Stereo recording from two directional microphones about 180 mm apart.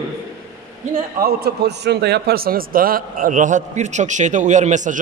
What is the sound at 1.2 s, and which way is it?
A man's voice, 65° right (ahead or behind).